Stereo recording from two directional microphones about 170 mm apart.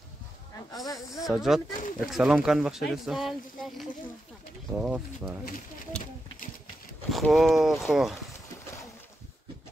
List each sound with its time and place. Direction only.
0.8 s speech: 20° left (ahead or behind)
1.2 s speech: centre (ahead or behind)
7.1 s speech: centre (ahead or behind)